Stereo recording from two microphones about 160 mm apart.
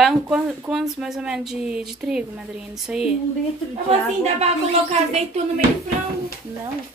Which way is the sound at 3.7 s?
40° right (ahead or behind).